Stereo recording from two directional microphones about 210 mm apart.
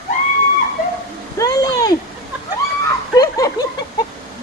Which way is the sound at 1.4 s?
15° left (ahead or behind).